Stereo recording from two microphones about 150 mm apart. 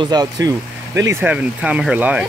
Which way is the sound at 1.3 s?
10° right (ahead or behind).